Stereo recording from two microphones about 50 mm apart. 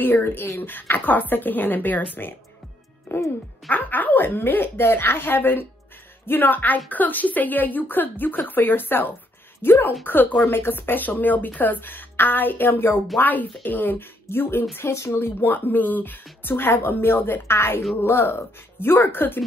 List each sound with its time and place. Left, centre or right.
0.0 s speech: left
3.7 s speech: left
15.0 s speech: left